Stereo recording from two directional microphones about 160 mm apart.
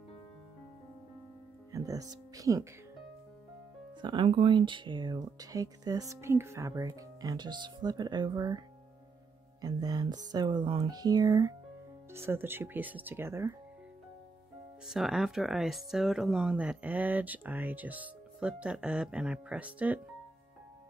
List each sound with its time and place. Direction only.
1.7 s speech: 20° right (ahead or behind)
4.0 s speech: 30° right (ahead or behind)
14.9 s speech: centre (ahead or behind)